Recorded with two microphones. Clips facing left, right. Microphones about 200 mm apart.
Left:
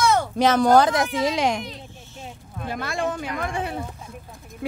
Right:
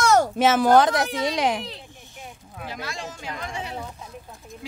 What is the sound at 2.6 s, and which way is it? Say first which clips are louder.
Speech: left 7 dB; 55° left (ahead or behind).